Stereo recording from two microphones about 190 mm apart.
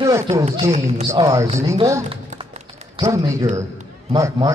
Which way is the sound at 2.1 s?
30° right (ahead or behind).